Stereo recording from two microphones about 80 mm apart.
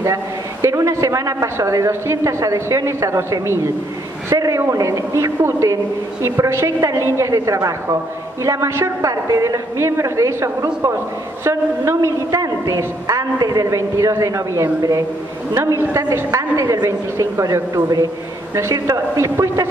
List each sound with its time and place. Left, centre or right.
0.0 s a woman's voice: right
15.9 s a woman's voice: right